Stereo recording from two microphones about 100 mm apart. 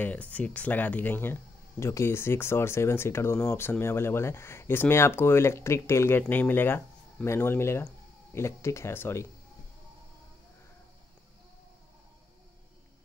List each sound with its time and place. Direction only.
0.0 s speech: 15° left (ahead or behind)